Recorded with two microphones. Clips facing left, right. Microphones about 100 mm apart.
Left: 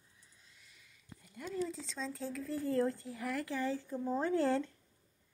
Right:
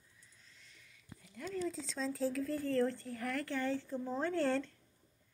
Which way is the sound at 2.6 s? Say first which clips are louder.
Left 2 dB; 10° left (ahead or behind).